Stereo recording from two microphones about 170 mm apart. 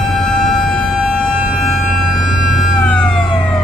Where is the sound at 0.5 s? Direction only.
Centre (ahead or behind).